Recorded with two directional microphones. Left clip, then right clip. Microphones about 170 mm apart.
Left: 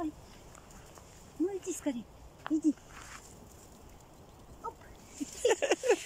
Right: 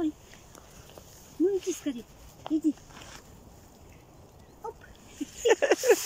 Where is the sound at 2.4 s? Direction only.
35° right (ahead or behind).